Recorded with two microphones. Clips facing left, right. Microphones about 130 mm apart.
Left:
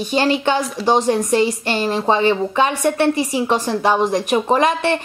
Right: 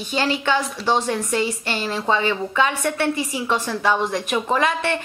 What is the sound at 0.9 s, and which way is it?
Speech, 40° left (ahead or behind).